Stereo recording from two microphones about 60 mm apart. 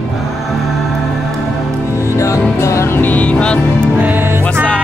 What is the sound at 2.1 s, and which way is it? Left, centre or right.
Music, left.